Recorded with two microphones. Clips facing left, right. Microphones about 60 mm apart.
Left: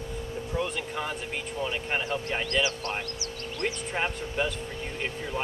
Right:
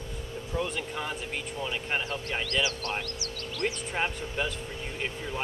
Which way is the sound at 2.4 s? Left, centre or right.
Left.